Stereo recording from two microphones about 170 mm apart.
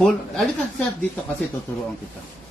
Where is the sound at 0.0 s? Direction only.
Centre (ahead or behind).